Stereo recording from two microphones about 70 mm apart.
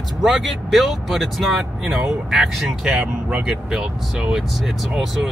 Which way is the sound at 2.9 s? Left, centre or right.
Centre.